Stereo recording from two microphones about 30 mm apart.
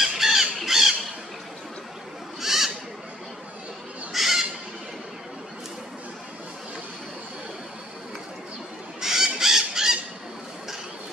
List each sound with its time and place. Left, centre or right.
0.0 s squawk: centre
2.4 s owl: centre
4.1 s bird: centre
9.0 s crow: centre
9.4 s a sound: centre